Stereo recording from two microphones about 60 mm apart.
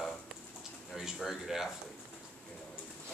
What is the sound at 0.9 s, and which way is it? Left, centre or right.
Speech, centre.